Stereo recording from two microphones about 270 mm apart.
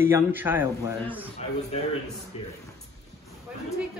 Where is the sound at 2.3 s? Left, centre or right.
Left.